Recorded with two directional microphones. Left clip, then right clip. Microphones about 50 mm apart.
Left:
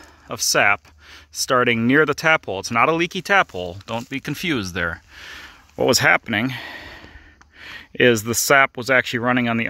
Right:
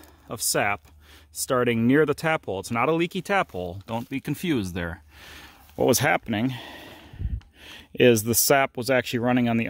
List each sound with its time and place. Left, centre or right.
0.3 s speech: centre
2.7 s speech: centre
5.2 s a sound: right
6.2 s speech: right
6.6 s a sound: right
7.6 s speech: right